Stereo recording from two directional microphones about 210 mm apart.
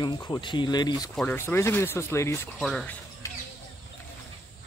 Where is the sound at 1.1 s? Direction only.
10° left (ahead or behind).